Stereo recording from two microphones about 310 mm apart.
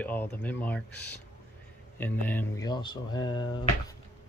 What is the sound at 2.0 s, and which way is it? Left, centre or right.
Speech, centre.